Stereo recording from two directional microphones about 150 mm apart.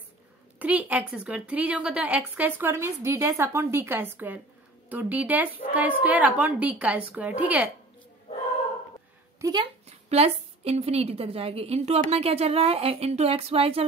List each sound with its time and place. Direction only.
0.6 s a woman's voice: 10° right (ahead or behind)
9.4 s speech: 30° right (ahead or behind)
9.8 s a woman's voice: 45° right (ahead or behind)